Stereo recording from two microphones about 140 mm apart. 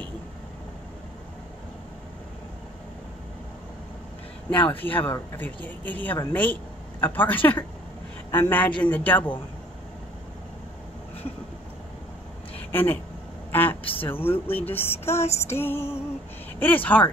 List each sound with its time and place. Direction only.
4.5 s speech: 10° left (ahead or behind)
12.7 s a woman's voice: 15° left (ahead or behind)